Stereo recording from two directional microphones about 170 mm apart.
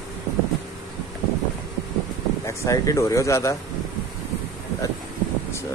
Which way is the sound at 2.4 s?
20° left (ahead or behind).